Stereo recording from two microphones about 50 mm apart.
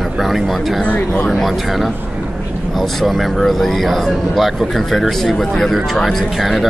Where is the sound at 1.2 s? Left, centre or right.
Centre.